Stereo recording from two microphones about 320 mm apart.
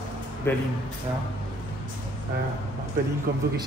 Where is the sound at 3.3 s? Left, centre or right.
Right.